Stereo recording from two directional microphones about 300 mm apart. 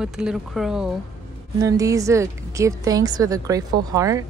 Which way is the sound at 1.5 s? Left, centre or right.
Centre.